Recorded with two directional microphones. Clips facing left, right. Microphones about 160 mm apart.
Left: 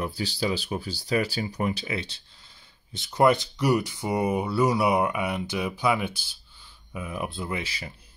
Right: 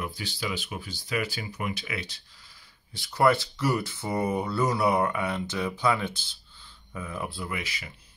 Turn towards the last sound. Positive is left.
turn(degrees=30)  # may be behind; listen again after turning